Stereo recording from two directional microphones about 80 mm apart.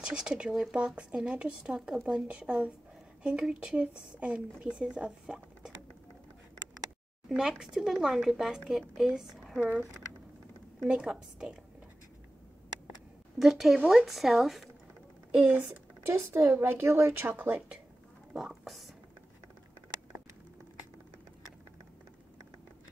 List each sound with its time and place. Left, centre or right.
0.0 s speech: centre
7.2 s speech: centre
9.6 s speech: centre
10.8 s speech: centre
13.4 s speech: centre
13.7 s speech: centre
14.0 s speech: centre
16.1 s speech: right; by 17.7 s centre
18.3 s speech: centre